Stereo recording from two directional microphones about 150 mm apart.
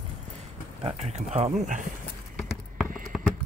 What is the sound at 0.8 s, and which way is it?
Speech, 50° right (ahead or behind).